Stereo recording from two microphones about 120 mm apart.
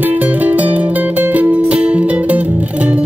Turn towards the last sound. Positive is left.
turn(degrees=-10)  # may be behind; listen again after turning